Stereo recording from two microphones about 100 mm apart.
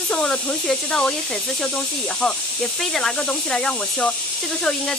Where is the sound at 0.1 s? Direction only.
10° left (ahead or behind).